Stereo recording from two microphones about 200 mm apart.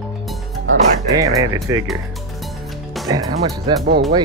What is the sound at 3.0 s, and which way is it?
Speech, 20° right (ahead or behind).